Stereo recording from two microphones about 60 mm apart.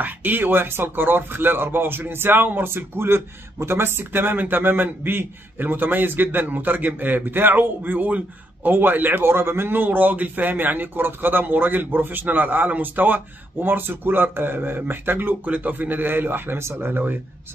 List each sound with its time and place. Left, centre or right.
0.0 s a man's voice: right